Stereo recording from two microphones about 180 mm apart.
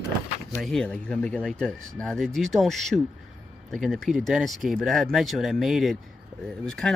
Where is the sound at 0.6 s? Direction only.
5° left (ahead or behind).